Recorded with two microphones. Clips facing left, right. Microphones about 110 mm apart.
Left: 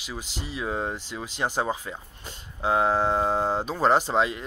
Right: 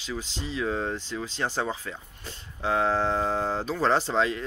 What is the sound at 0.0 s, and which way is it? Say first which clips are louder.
Speech: right 2 dB; 10° left (ahead or behind).